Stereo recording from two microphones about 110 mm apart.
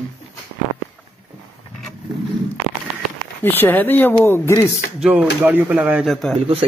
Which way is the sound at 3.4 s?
15° left (ahead or behind).